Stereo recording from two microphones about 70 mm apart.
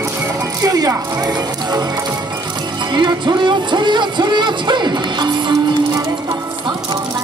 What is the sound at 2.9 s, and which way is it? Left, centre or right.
Music, right.